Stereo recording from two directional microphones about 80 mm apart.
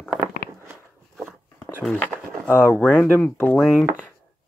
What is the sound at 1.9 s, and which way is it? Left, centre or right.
Speech, centre.